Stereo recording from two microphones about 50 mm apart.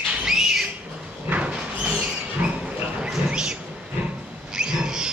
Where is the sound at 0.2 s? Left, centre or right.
Centre.